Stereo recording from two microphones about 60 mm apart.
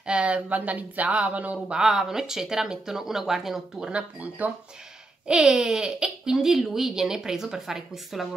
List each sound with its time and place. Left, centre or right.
0.0 s speech: centre
1.8 s speech: centre
3.9 s speech: right
5.2 s speech: centre